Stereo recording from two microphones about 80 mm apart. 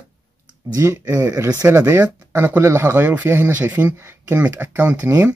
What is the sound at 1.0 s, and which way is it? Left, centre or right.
Speech, right.